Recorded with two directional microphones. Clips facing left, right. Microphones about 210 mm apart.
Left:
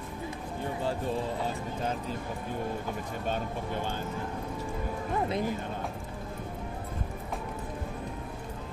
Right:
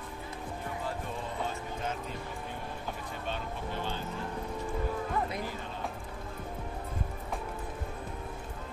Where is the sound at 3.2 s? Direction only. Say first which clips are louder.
Left 4 dB; 45° left (ahead or behind).